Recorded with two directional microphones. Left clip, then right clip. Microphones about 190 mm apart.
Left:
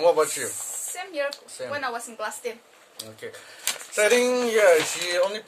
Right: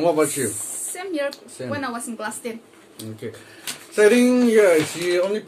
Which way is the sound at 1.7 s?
10° right (ahead or behind).